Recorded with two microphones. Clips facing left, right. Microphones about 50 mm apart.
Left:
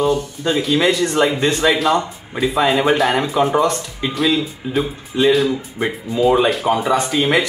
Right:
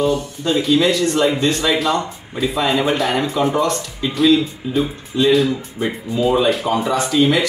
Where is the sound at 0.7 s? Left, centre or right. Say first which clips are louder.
Left 3 dB; left.